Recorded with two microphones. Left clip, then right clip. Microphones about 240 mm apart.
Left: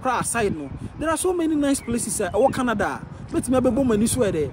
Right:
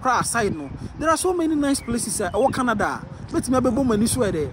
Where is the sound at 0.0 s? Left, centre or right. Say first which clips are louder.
Right 2 dB; centre.